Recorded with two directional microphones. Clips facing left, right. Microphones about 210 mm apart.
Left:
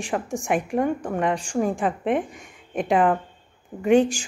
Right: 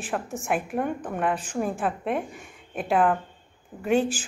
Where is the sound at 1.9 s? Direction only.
Centre (ahead or behind).